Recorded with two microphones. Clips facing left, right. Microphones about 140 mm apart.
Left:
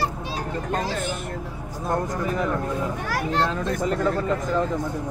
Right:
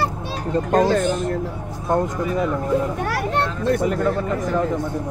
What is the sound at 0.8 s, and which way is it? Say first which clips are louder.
Speech: right 10 dB; 60° right (ahead or behind).